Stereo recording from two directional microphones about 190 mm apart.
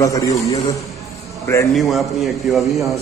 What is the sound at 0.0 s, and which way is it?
Speech, 15° left (ahead or behind).